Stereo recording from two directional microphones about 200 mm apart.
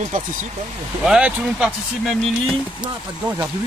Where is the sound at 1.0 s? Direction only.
5° right (ahead or behind).